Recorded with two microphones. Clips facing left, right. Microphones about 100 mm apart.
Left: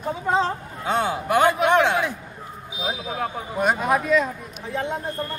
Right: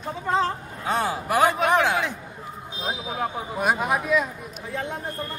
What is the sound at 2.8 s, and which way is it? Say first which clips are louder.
Speech: left 1 dB; centre (ahead or behind).